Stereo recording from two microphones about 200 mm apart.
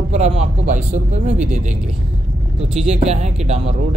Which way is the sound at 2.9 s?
30° right (ahead or behind).